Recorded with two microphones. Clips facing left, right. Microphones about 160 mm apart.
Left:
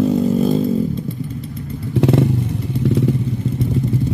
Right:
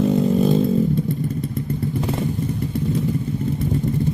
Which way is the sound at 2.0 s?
80° left.